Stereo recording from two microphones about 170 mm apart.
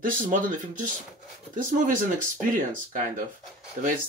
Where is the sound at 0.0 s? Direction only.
50° right (ahead or behind).